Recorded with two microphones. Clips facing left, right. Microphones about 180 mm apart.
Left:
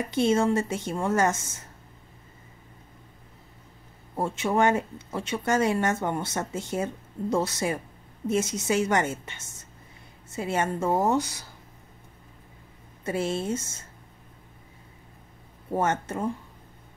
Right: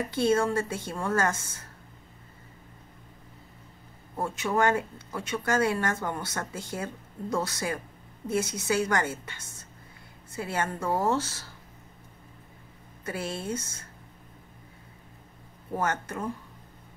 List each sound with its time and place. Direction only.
0.1 s speech: 20° left (ahead or behind)
4.2 s speech: 25° left (ahead or behind)
13.0 s speech: 25° left (ahead or behind)
15.7 s speech: 25° left (ahead or behind)